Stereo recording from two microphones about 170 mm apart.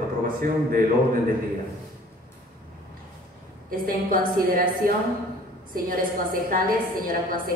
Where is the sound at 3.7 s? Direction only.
55° right (ahead or behind).